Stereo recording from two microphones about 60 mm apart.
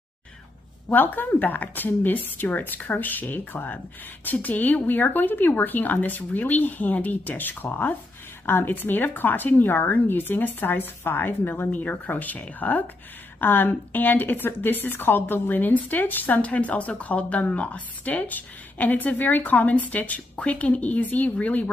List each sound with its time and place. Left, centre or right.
0.8 s a woman's voice: left